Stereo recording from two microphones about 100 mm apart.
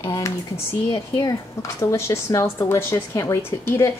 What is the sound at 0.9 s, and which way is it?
Speech, 45° left (ahead or behind).